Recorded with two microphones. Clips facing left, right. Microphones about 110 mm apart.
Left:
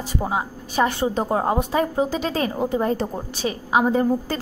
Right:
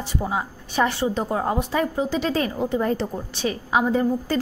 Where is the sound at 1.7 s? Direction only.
40° left (ahead or behind).